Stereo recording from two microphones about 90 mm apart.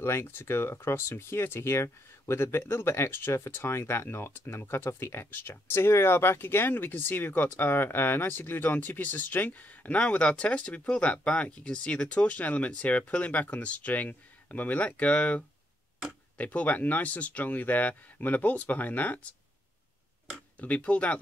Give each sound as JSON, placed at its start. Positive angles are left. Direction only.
{"t": 0.0, "sound": "speech", "side_deg": 30}
{"t": 20.5, "sound": "speech", "side_deg": 15}